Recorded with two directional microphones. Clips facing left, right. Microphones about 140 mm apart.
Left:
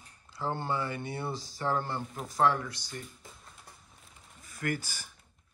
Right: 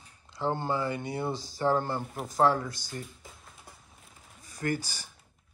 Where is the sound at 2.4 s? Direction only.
30° right (ahead or behind).